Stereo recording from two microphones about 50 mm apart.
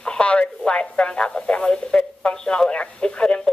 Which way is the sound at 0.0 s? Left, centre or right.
Left.